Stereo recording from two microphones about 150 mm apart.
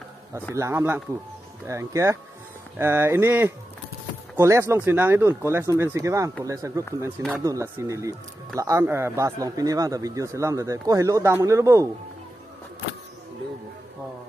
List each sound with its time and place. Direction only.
0.6 s a man's voice: 20° right (ahead or behind)